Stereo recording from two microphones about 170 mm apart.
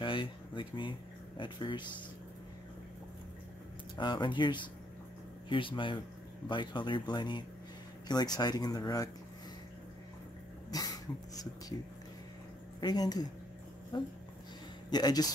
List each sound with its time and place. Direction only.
0.0 s speech: 30° left (ahead or behind)
3.9 s speech: 25° left (ahead or behind)
10.7 s dog: 20° left (ahead or behind)
12.8 s speech: 25° left (ahead or behind)